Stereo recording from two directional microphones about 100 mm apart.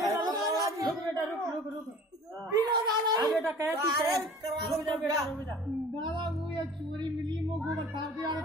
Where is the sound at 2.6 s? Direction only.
45° right (ahead or behind).